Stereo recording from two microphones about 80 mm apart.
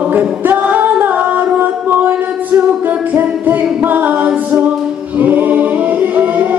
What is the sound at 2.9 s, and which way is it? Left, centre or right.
Music, right.